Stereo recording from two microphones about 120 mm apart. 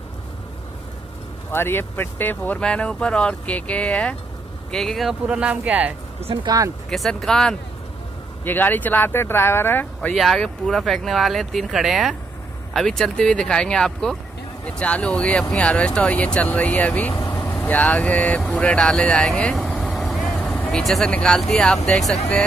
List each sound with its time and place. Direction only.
1.5 s speech: 20° left (ahead or behind); by 5.9 s 10° right (ahead or behind)
6.2 s speech: 40° right (ahead or behind)
6.9 s speech: 5° left (ahead or behind)
8.5 s speech: 15° left (ahead or behind)
10.1 s speech: centre (ahead or behind)
19.9 s vehicle: centre (ahead or behind)
20.8 s speech: 5° left (ahead or behind)